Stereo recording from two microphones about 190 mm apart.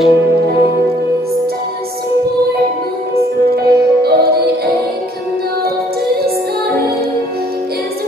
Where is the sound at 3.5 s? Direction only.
55° right (ahead or behind).